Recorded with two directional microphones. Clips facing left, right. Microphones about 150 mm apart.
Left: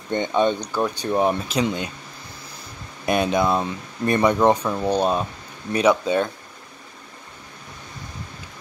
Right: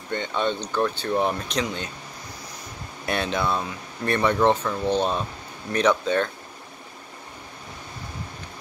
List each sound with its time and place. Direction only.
0.1 s speech: 15° left (ahead or behind)
3.1 s speech: 15° left (ahead or behind)